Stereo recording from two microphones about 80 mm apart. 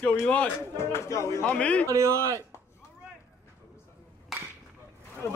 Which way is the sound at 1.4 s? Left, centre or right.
Centre.